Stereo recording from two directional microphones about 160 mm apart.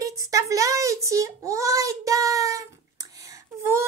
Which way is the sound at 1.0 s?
20° right (ahead or behind).